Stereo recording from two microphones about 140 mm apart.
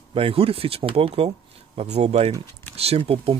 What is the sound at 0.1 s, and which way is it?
Speech, 40° right (ahead or behind).